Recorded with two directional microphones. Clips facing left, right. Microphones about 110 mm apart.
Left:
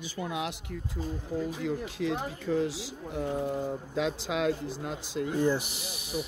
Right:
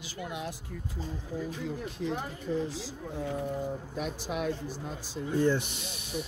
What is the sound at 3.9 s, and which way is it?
Speech, 90° left.